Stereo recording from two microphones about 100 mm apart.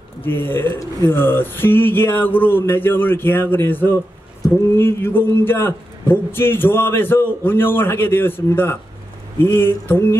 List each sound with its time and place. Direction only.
0.2 s a man's voice: 20° left (ahead or behind)